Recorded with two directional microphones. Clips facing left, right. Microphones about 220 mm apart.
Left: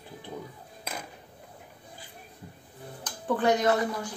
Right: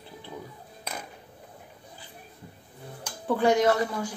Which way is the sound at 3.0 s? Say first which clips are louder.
Right 2 dB; 10° right (ahead or behind).